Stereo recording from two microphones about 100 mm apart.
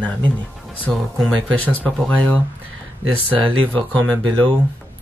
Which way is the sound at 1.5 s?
15° left (ahead or behind).